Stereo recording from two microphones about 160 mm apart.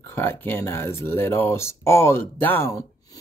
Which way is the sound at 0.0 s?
15° left (ahead or behind).